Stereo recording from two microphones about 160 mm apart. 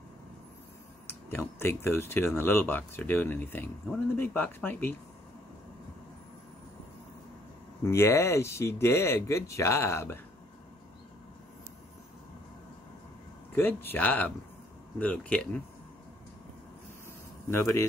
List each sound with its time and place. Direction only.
1.0 s speech: 15° left (ahead or behind)
7.8 s speech: 15° left (ahead or behind)
13.6 s speech: 15° left (ahead or behind)
17.5 s speech: 15° left (ahead or behind)